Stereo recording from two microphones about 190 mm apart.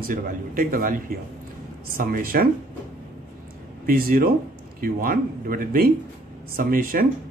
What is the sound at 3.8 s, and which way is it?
A man's voice, 50° right (ahead or behind).